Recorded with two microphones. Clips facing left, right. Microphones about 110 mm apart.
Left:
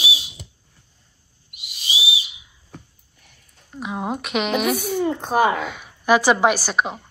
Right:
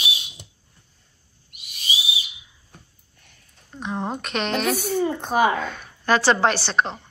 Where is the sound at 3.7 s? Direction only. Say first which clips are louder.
Left 1 dB; 5° left (ahead or behind).